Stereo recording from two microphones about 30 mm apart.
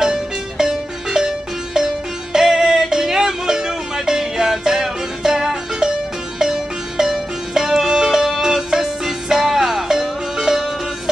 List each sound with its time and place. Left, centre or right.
0.0 s music: centre